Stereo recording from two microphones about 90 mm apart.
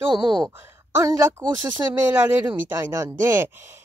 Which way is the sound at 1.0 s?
30° right (ahead or behind).